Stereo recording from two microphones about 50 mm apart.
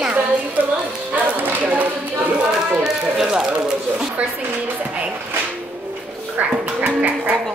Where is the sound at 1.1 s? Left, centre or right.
Right.